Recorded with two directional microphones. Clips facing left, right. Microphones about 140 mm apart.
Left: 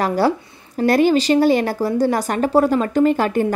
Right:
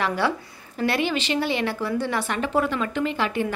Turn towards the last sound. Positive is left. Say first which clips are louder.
# left 8 dB
turn(degrees=45)  # may be behind; listen again after turning